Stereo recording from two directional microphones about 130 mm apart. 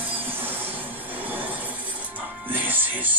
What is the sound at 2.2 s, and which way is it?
Music, 15° right (ahead or behind).